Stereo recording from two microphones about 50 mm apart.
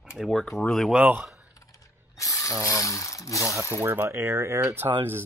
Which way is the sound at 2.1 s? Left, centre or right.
Left.